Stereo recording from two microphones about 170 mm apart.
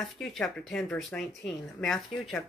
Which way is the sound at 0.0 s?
Centre (ahead or behind).